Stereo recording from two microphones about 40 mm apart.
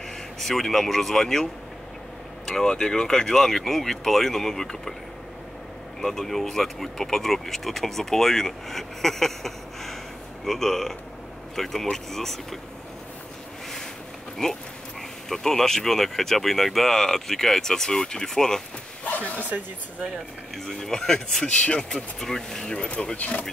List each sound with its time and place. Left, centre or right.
0.4 s speech: centre
5.9 s speech: centre
14.4 s speech: centre
19.0 s a sound: left
20.5 s speech: centre
21.6 s speech: left
22.2 s speech: centre
23.1 s speech: left